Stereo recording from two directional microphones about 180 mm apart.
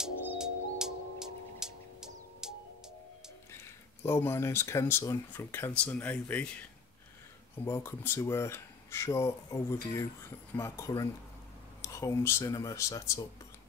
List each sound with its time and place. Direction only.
0.4 s music: 5° right (ahead or behind)
4.0 s speech: 15° left (ahead or behind)
7.6 s speech: 15° left (ahead or behind)